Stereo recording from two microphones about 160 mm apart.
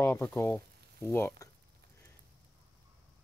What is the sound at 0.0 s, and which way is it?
Speech, 15° left (ahead or behind).